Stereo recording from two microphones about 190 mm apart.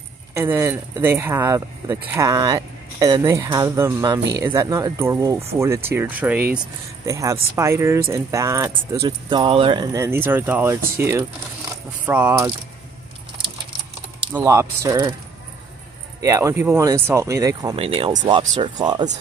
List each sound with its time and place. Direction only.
0.3 s speech: 15° right (ahead or behind)
14.3 s speech: 15° right (ahead or behind)
16.2 s speech: 15° right (ahead or behind)
17.7 s speech: 30° right (ahead or behind)